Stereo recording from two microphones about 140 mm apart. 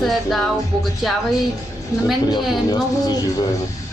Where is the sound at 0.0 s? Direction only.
Centre (ahead or behind).